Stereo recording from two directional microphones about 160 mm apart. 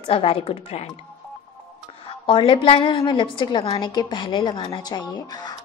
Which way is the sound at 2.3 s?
30° left (ahead or behind).